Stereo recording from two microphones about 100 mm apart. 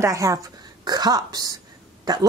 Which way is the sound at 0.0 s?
35° right (ahead or behind).